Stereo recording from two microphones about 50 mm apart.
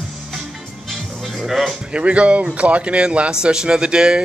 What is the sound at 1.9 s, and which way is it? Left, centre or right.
Speech, right.